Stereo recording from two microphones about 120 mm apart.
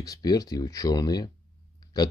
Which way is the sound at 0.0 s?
30° left (ahead or behind).